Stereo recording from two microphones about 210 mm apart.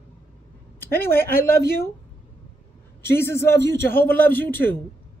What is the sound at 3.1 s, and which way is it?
Speech, 10° left (ahead or behind).